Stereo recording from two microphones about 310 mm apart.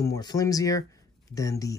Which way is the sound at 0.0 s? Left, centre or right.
Centre.